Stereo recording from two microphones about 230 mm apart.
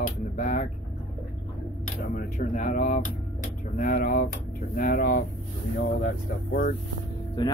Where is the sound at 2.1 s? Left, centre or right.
Left.